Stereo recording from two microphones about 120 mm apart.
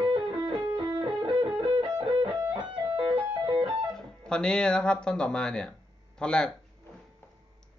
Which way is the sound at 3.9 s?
5° left (ahead or behind).